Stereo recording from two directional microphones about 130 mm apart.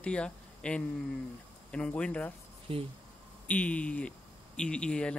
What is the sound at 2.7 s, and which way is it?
Speech, 45° right (ahead or behind).